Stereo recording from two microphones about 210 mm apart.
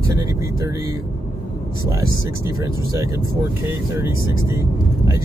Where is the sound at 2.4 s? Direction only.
15° right (ahead or behind).